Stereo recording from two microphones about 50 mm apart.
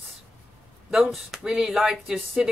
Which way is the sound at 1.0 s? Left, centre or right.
Centre.